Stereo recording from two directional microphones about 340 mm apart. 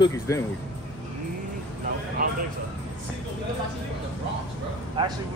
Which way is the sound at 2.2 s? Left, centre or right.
Right.